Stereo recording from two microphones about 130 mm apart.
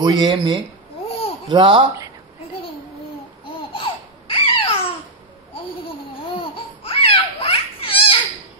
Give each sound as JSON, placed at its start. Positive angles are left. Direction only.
{"t": 0.0, "sound": "speech", "side_deg": -35}
{"t": 3.4, "sound": "babbling", "side_deg": 45}
{"t": 6.5, "sound": "babbling", "side_deg": 45}